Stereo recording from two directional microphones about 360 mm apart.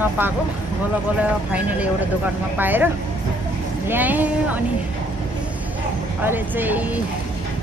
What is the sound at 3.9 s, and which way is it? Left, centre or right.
Speech, centre.